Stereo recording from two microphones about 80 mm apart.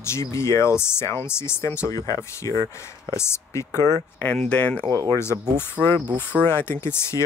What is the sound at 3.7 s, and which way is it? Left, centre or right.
Speech, right.